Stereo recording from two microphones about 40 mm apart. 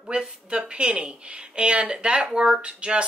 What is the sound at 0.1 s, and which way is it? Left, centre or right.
Speech, right.